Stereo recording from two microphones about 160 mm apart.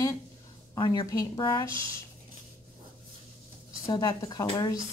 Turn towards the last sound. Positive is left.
turn(degrees=25)  # may be behind; listen again after turning